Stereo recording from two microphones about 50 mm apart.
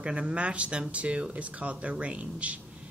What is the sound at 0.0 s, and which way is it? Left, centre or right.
Speech, right.